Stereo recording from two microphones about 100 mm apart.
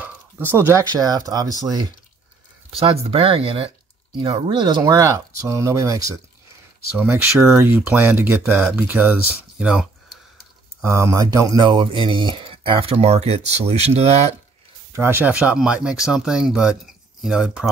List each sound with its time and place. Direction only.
0.0 s a sound: 20° right (ahead or behind)
0.7 s speech: 40° right (ahead or behind)
2.8 s speech: 75° right (ahead or behind); by 6.0 s 30° right (ahead or behind)
7.0 s speech: 20° right (ahead or behind)
10.8 s speech: 30° right (ahead or behind)
11.2 s speech: 45° right (ahead or behind)
12.4 s speech: 70° right (ahead or behind); by 14.3 s 90° right
14.9 s speech: 25° right (ahead or behind); by 17.6 s 5° right (ahead or behind)